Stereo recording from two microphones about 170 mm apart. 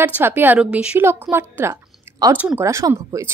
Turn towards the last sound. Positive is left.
turn(degrees=-15)  # may be behind; listen again after turning